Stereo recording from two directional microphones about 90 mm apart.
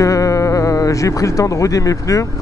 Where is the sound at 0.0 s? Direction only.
40° left (ahead or behind).